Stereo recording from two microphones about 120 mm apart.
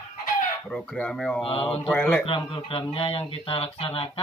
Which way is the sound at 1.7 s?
10° left (ahead or behind).